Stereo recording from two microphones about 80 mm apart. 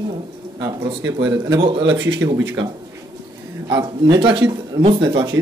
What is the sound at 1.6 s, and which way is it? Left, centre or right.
Speech, right.